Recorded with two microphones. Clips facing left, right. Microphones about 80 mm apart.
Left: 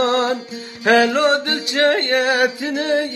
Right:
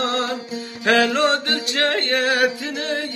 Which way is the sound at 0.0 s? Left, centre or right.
Left.